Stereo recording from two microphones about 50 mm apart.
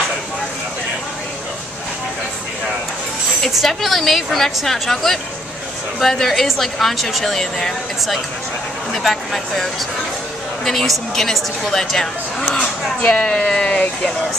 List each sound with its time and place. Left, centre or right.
3.4 s a woman's voice: centre
13.0 s speech: left